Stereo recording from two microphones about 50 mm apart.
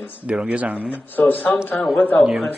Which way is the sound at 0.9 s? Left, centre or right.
Left.